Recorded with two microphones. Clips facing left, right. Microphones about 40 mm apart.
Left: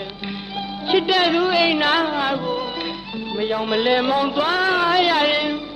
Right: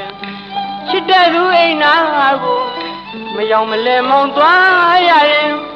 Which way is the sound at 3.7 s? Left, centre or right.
Centre.